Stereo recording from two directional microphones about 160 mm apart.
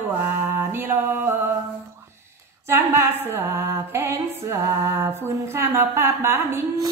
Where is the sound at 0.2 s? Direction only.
15° right (ahead or behind).